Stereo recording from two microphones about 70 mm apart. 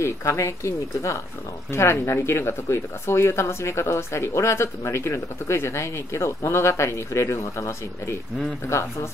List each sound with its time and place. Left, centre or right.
0.0 s speech: left